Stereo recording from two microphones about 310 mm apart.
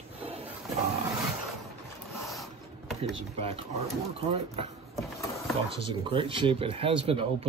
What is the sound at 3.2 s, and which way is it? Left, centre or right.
Speech, centre.